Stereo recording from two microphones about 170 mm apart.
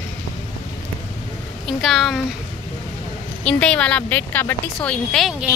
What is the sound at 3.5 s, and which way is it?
Speech, 5° left (ahead or behind).